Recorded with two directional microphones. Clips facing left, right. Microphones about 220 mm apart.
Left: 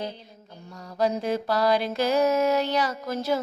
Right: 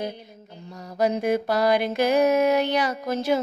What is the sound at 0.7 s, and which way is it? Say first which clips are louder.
Mantra: right 2 dB; 20° right (ahead or behind).